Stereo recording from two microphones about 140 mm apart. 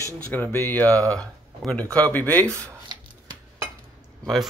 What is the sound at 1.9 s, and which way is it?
Cutlery, 15° left (ahead or behind).